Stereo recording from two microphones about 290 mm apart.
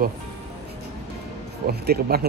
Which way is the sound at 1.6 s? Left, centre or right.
Right.